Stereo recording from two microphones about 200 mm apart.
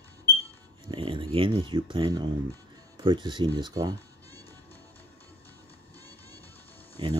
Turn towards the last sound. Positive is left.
turn(degrees=-25)  # may be behind; listen again after turning